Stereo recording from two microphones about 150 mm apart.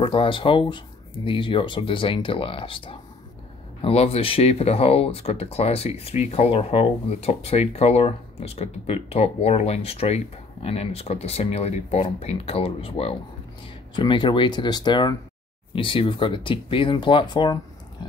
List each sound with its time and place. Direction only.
0.0 s speech: 35° left (ahead or behind)